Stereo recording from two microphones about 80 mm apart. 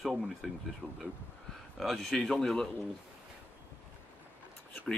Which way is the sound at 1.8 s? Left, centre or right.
Centre.